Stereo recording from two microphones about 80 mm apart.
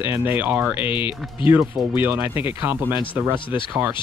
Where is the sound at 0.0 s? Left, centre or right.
Right.